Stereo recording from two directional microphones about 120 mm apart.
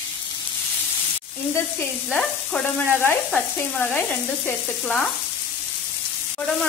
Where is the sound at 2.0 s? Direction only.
5° left (ahead or behind).